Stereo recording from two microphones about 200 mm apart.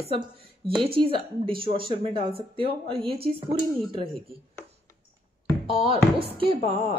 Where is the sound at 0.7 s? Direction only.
25° right (ahead or behind).